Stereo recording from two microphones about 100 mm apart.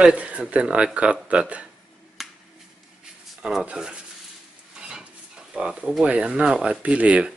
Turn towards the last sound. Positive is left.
turn(degrees=-15)  # may be behind; listen again after turning